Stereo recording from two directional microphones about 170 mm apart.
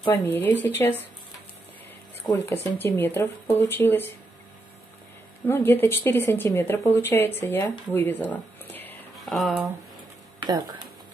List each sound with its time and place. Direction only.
0.1 s speech: 10° left (ahead or behind)
2.3 s speech: 15° left (ahead or behind)
5.5 s speech: 10° left (ahead or behind)